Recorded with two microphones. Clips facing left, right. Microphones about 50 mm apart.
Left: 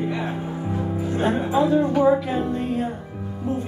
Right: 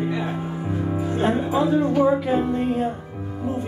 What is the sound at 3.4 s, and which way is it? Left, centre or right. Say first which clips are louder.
Music: even; centre.